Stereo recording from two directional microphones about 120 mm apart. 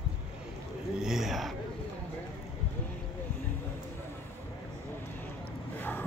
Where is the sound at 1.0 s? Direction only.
Centre (ahead or behind).